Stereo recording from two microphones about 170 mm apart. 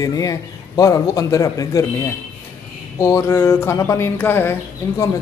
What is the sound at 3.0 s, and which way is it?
Speech, 20° left (ahead or behind).